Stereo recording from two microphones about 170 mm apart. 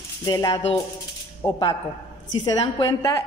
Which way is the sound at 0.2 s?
20° left (ahead or behind).